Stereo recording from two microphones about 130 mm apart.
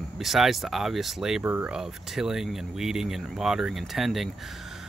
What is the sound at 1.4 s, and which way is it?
Speech, 15° right (ahead or behind).